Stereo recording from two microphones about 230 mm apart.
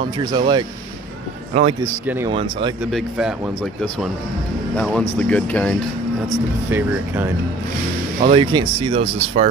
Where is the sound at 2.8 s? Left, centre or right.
Centre.